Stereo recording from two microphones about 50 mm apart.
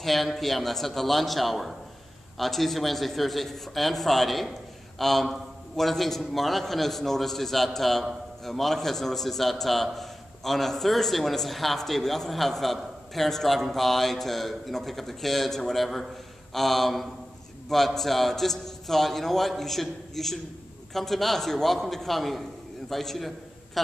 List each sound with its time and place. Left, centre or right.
0.0 s a man's voice: centre